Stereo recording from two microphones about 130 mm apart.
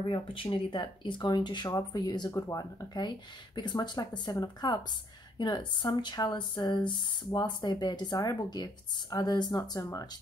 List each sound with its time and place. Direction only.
0.0 s speech: 40° left (ahead or behind)